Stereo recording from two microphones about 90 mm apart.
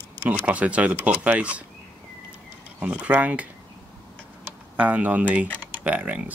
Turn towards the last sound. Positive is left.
turn(degrees=-15)  # may be behind; listen again after turning